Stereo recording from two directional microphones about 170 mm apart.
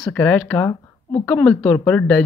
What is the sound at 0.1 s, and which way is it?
Speech, 10° left (ahead or behind).